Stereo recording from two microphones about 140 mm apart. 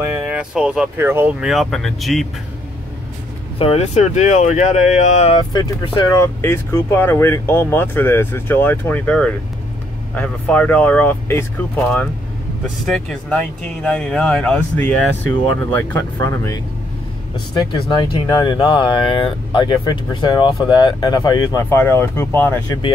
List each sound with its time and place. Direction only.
0.2 s speech: 5° right (ahead or behind)
1.4 s speech: centre (ahead or behind)
3.5 s speech: 45° left (ahead or behind)
5.3 s speech: 30° left (ahead or behind); by 11.4 s 15° left (ahead or behind)
12.8 s speech: 5° left (ahead or behind)
16.2 s speech: 25° left (ahead or behind)